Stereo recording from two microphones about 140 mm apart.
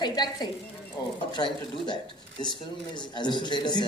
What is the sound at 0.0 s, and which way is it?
A woman's voice, 30° left (ahead or behind).